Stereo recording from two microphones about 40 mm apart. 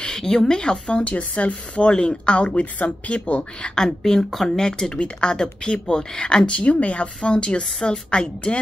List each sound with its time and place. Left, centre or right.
0.1 s speech: centre
1.0 s speech: left
1.5 s a woman's voice: left
2.6 s speech: left
3.6 s speech: centre
4.6 s a woman's voice: centre